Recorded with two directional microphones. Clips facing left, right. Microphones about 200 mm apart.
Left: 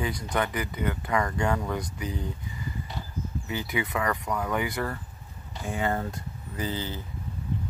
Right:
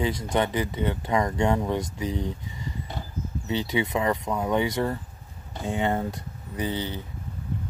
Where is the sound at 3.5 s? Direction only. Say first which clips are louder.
Right 6 dB; 25° right (ahead or behind).